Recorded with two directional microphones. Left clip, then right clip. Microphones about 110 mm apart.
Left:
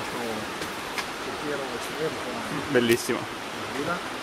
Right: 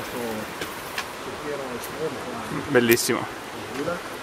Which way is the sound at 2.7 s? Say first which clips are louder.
Right 4 dB; 15° right (ahead or behind).